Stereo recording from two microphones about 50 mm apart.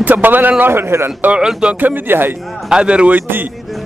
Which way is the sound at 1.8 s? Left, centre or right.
Right.